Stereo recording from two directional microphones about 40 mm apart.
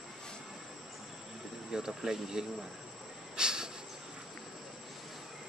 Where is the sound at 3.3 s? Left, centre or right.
Centre.